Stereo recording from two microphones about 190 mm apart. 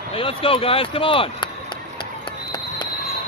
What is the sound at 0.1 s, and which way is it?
Speech, 30° left (ahead or behind).